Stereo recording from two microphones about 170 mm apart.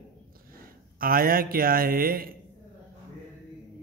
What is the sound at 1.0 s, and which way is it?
A man's voice, 60° right (ahead or behind).